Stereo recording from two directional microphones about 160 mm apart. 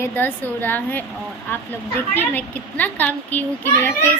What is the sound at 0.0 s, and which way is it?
A woman's voice, 10° left (ahead or behind).